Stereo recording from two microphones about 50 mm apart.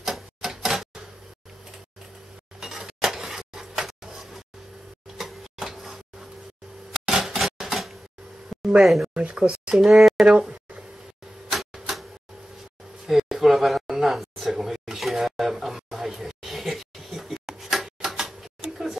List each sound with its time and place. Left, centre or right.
0.0 s printer: centre
2.6 s a sound: centre
9.1 s speech: right
9.8 s speech: centre
10.2 s speech: centre
11.5 s tick-tock: centre
13.0 s a sound: centre